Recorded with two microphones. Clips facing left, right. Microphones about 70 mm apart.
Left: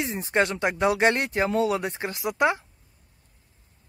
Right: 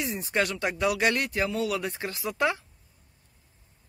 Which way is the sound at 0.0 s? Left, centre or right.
Left.